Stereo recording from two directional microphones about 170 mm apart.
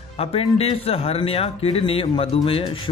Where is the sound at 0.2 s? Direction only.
35° left (ahead or behind).